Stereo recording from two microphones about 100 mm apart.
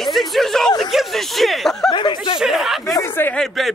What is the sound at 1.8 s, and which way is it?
Speech, 50° left (ahead or behind).